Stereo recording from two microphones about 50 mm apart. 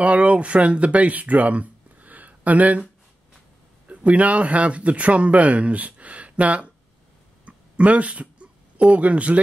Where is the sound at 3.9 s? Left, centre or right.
Right.